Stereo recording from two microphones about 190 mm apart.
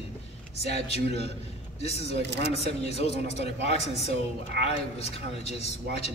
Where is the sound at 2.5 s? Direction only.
35° left (ahead or behind).